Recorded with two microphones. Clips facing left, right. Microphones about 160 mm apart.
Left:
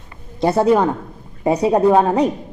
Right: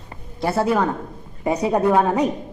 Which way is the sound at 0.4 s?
20° left (ahead or behind).